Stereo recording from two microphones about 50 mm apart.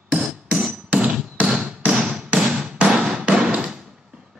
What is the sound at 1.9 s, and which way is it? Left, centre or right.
Hammer, centre.